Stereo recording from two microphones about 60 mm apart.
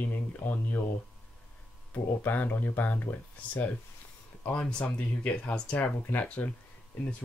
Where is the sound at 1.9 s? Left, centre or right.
Left.